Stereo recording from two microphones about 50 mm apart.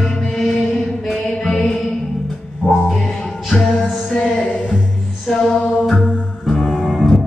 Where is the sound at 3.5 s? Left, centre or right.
Left.